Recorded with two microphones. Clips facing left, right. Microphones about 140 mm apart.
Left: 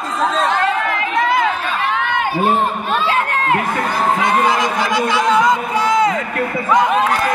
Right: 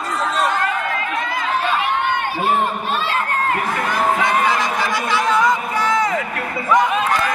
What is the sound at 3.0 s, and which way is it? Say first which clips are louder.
Crowd: left 4 dB; 70° left (ahead or behind).